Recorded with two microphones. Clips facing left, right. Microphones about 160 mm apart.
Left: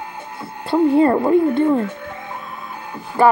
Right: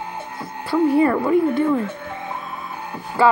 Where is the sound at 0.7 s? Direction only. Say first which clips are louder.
Left 2 dB; 30° left (ahead or behind).